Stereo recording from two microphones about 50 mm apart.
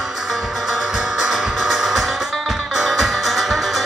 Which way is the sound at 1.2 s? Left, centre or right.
Centre.